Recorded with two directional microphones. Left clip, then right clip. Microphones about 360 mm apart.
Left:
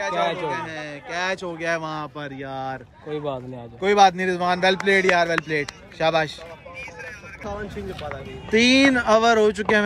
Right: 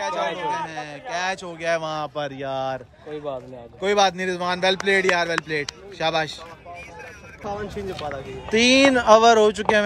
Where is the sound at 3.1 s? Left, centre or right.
Left.